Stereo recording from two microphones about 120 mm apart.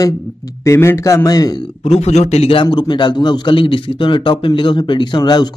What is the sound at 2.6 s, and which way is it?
Speech, 40° left (ahead or behind).